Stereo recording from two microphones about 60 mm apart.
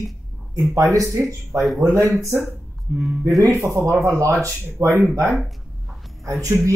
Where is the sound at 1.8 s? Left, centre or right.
Right.